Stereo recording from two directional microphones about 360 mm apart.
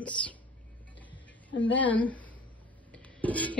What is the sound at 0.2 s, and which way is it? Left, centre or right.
Speech, centre.